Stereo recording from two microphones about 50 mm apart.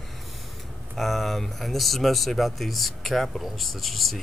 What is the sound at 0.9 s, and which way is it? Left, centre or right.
Speech, centre.